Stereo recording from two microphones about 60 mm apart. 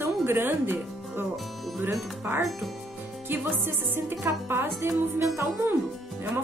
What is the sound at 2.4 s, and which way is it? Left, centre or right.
Speech, centre.